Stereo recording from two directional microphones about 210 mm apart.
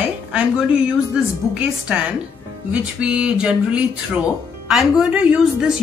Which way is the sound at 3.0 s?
5° right (ahead or behind).